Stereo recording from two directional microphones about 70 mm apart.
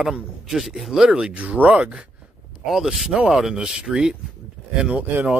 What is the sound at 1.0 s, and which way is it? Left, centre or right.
Speech, centre.